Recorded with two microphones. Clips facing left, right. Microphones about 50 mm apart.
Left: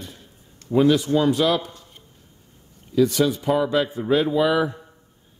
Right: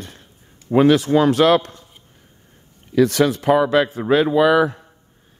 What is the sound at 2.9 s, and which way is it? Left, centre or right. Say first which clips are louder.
Speech: right 3 dB; right.